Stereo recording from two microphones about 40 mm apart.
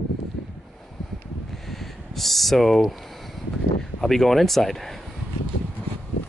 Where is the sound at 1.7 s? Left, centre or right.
Centre.